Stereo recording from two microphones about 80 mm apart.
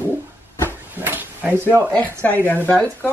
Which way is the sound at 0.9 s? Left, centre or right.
Right.